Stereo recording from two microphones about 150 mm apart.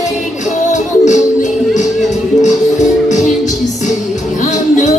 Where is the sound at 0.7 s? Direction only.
55° left (ahead or behind).